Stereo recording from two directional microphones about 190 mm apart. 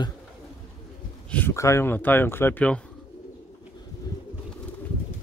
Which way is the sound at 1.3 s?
10° left (ahead or behind).